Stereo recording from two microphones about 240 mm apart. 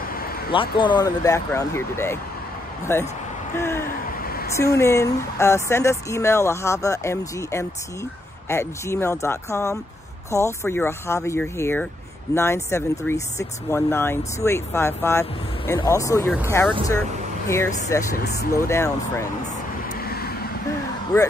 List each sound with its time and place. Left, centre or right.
0.0 s a sound: left
0.5 s speech: left
4.2 s a sound: left
4.7 s speech: centre
18.1 s speech: left
18.5 s speech: centre
19.9 s vehicle: left